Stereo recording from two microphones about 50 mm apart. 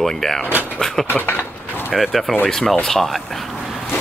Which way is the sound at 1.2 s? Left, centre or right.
Left.